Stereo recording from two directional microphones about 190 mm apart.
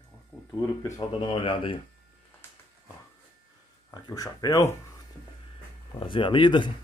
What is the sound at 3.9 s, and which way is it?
Speech, 20° left (ahead or behind).